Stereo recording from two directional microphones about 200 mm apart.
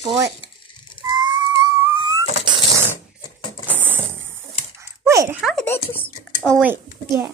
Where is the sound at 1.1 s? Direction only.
20° right (ahead or behind).